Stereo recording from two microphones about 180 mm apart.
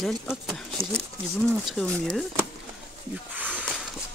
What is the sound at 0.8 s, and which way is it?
Speech, 30° right (ahead or behind).